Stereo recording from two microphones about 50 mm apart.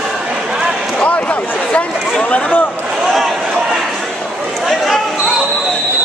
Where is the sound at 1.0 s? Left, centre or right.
Left.